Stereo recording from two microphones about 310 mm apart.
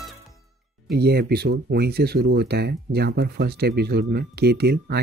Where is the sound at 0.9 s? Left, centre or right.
Right.